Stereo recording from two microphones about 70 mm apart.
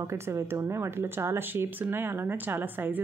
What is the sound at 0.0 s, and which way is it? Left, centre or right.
Speech, right.